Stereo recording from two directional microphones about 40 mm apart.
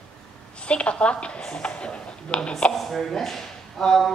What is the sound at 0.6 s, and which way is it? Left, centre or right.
A woman's voice, left.